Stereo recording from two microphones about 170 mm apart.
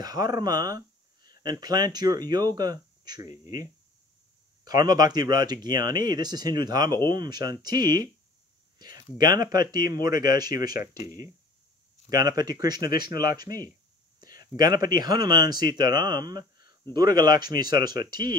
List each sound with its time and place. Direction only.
0.0 s speech: 25° right (ahead or behind)
4.6 s speech: 25° right (ahead or behind)
8.7 s a sound: 25° right (ahead or behind)
9.2 s speech: 25° right (ahead or behind)
12.1 s speech: 25° right (ahead or behind)
13.0 s speech: 60° left (ahead or behind)
14.3 s speech: 25° right (ahead or behind)